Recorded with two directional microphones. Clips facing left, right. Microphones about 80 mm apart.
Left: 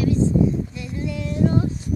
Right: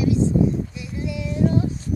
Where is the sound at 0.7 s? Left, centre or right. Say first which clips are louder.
Left 1 dB; centre.